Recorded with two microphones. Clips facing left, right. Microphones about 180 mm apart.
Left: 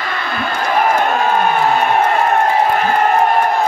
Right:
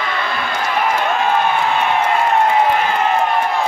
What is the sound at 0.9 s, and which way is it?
Crowd, 45° left (ahead or behind).